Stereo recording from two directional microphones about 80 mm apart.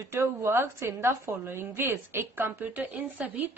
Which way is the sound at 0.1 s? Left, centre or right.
Right.